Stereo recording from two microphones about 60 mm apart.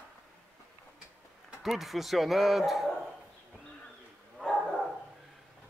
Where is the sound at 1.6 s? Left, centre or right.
Centre.